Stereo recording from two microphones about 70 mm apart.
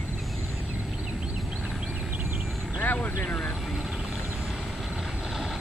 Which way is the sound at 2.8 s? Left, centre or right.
Left.